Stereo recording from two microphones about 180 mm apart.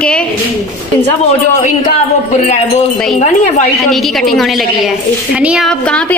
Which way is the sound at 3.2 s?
40° left (ahead or behind).